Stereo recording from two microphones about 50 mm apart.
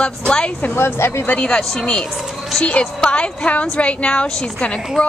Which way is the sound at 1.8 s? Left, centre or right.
Centre.